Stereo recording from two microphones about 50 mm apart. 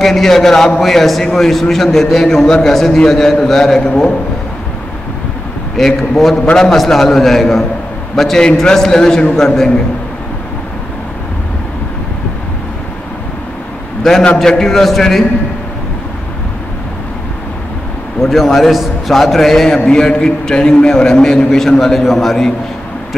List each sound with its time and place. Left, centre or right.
0.0 s a man's voice: centre
3.8 s a man's voice: centre
5.8 s a man's voice: centre
14.4 s a man's voice: centre
18.2 s a man's voice: centre